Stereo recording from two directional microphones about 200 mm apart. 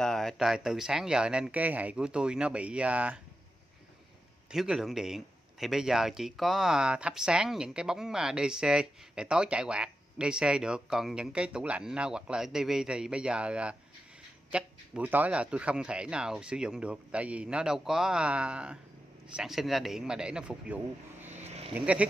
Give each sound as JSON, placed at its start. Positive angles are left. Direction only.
{"t": 0.0, "sound": "speech", "side_deg": 0}
{"t": 4.5, "sound": "speech", "side_deg": 0}
{"t": 21.3, "sound": "vehicle", "side_deg": -35}
{"t": 21.7, "sound": "speech", "side_deg": -5}